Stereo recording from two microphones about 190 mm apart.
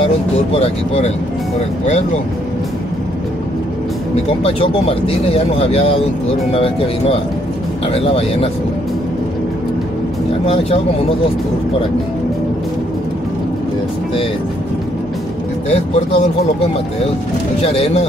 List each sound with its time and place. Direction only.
0.0 s speech: 30° left (ahead or behind)
4.4 s speech: 30° left (ahead or behind)
10.4 s speech: 30° left (ahead or behind)
15.7 s speech: 35° left (ahead or behind)
17.6 s speech: 35° left (ahead or behind)